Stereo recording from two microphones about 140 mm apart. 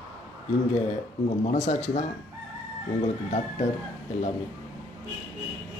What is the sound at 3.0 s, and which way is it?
Speech, 55° left (ahead or behind).